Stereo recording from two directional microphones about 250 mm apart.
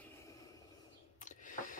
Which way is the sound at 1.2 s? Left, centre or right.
Left.